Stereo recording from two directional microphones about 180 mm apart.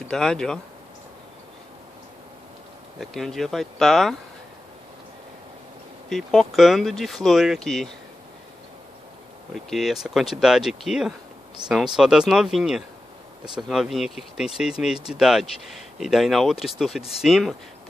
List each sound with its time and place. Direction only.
0.1 s speech: 5° left (ahead or behind)
3.0 s speech: centre (ahead or behind)
6.0 s speech: centre (ahead or behind)
9.5 s speech: centre (ahead or behind)